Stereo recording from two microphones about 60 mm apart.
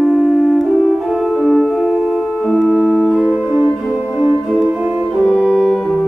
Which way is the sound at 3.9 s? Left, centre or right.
Centre.